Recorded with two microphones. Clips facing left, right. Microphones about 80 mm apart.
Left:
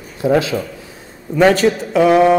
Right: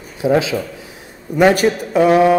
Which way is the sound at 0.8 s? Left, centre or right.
Centre.